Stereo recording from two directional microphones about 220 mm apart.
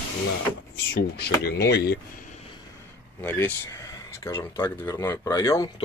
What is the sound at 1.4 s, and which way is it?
Speech, 45° left (ahead or behind).